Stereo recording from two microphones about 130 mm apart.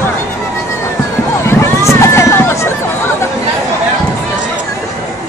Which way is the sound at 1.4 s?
20° left (ahead or behind).